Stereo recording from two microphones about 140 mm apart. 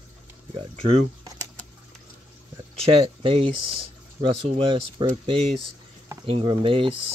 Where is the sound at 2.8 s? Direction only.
45° right (ahead or behind).